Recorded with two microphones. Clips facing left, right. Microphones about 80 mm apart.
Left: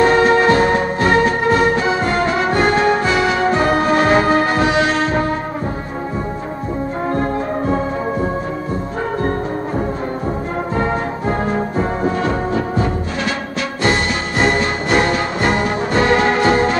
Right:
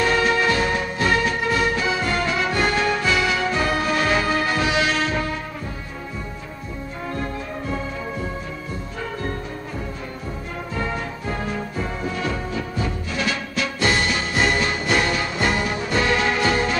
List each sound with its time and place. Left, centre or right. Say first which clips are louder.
0.0 s music: left 7 dB; left
7.1 s music: left 8 dB; left
10.8 s music: left 6 dB; left